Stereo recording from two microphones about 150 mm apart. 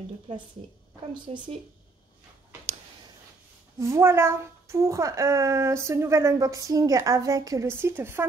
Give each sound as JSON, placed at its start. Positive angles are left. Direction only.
{"t": 1.3, "sound": "speech", "side_deg": -45}
{"t": 3.8, "sound": "a woman's voice", "side_deg": -20}